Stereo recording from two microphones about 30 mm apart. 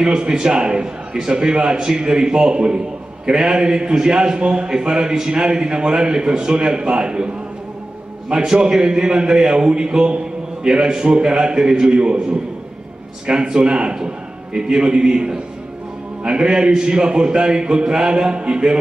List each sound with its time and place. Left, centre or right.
0.0 s a man's voice: right
13.3 s a man's voice: right